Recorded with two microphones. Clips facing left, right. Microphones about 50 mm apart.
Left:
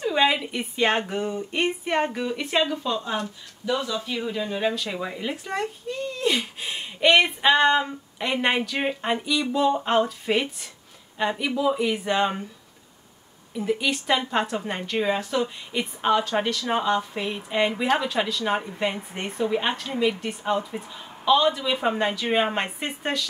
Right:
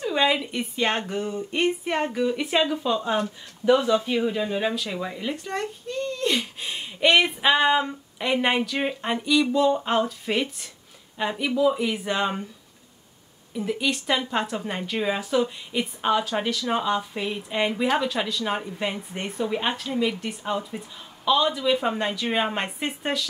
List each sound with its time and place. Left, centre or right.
0.0 s speech: centre
3.2 s speech: right
4.0 s speech: centre
13.5 s speech: centre